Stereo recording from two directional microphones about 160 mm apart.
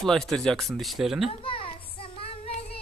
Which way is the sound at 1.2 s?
35° left (ahead or behind).